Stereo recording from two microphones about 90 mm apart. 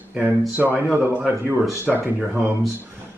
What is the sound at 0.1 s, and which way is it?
Speech, 15° right (ahead or behind).